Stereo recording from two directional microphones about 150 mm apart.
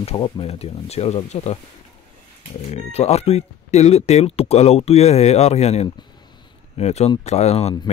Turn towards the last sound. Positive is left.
turn(degrees=45)  # may be behind; listen again after turning